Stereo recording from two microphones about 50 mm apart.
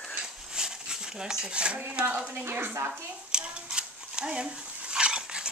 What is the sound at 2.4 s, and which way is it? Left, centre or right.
Speech, right.